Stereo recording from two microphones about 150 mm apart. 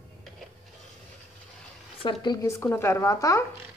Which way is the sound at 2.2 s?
20° left (ahead or behind).